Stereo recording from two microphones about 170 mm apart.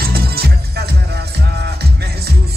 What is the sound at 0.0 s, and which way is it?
Music, 65° right (ahead or behind).